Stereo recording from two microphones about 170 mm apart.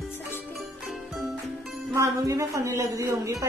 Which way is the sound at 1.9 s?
20° right (ahead or behind).